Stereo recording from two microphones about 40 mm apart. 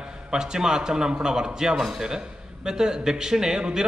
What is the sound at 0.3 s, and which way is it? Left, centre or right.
A man's voice, centre.